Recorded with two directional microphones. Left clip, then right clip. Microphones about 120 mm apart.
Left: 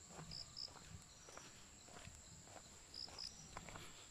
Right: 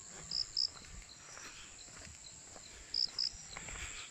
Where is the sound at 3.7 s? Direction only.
30° left (ahead or behind).